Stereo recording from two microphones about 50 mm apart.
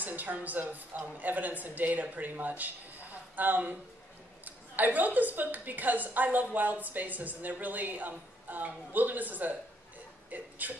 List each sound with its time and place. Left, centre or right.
0.0 s a woman's voice: right